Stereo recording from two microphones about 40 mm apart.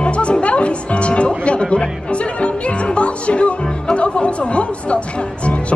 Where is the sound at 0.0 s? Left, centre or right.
Left.